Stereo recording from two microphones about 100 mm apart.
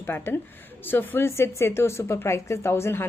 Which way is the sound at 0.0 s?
20° left (ahead or behind).